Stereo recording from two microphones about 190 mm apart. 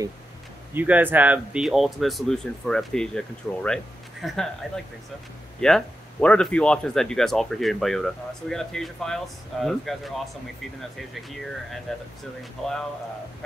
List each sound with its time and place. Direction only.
0.7 s speech: 10° right (ahead or behind)
5.6 s speech: 5° left (ahead or behind)